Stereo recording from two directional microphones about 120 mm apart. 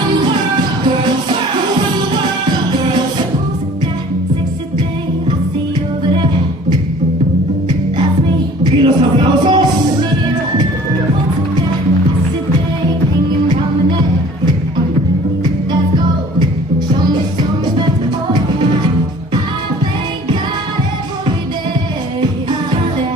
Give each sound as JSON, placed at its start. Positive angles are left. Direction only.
{"t": 8.7, "sound": "music", "side_deg": -40}